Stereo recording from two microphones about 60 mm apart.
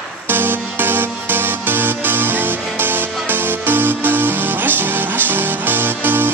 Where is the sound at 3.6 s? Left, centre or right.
Right.